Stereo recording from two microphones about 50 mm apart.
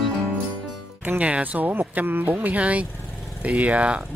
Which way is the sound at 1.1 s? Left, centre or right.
Right.